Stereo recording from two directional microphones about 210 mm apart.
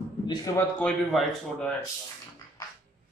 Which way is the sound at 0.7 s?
Centre (ahead or behind).